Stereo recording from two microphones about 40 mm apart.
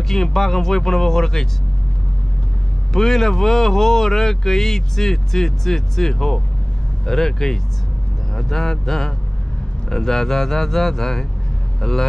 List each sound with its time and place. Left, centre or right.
0.1 s speech: centre
2.9 s speech: centre